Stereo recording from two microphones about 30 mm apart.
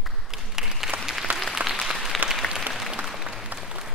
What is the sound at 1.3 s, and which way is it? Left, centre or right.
Applause, right.